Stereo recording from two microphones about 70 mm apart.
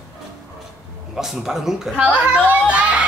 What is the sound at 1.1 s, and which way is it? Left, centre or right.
Speech, centre.